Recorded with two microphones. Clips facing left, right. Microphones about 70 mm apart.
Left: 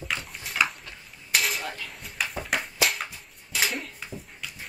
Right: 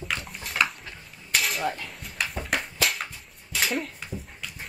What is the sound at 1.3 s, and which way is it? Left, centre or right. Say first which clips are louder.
Dishes: even; centre.